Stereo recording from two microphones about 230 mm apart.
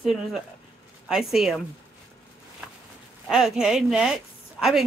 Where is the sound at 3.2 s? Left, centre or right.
Centre.